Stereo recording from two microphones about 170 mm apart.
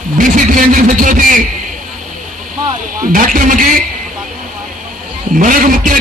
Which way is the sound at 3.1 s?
50° right (ahead or behind).